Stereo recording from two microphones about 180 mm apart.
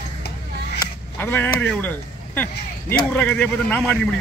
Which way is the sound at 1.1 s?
10° left (ahead or behind).